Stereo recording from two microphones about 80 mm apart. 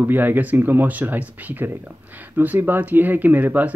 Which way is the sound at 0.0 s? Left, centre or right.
Right.